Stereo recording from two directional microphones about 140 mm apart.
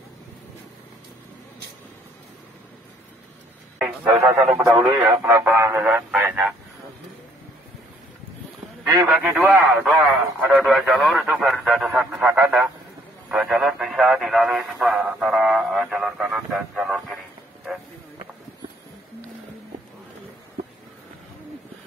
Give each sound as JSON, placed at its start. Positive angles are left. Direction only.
{"t": 3.7, "sound": "speech", "side_deg": -10}
{"t": 4.6, "sound": "speech", "side_deg": -20}
{"t": 8.8, "sound": "speech", "side_deg": -15}
{"t": 10.4, "sound": "speech", "side_deg": -5}